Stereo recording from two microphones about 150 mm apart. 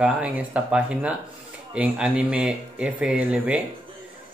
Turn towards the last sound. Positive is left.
turn(degrees=-10)  # may be behind; listen again after turning